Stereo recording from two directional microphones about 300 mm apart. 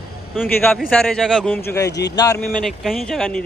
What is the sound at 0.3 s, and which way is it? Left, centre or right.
Speech, centre.